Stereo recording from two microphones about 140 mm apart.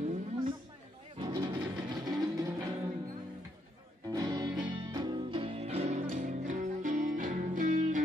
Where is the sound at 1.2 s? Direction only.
30° right (ahead or behind).